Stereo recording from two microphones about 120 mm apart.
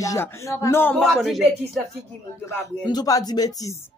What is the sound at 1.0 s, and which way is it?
Speech, centre (ahead or behind).